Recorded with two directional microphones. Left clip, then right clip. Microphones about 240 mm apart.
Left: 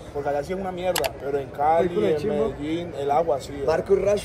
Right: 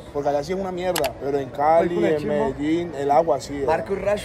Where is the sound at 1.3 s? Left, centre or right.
Right.